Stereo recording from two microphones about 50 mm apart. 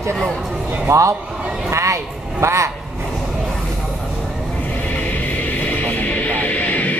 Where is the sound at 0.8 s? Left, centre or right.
Right.